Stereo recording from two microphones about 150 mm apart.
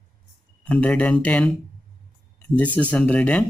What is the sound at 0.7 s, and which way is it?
Speech, 10° left (ahead or behind).